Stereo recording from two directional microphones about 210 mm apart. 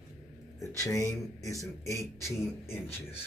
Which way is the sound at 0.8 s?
15° left (ahead or behind).